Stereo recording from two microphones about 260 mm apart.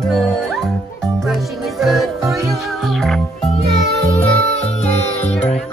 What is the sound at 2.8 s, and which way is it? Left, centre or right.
Music, centre.